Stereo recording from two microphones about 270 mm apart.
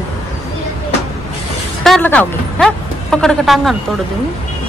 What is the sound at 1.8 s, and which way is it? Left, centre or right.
Speech, centre.